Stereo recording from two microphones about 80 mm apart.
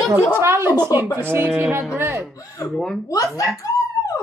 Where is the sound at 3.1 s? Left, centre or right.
Left.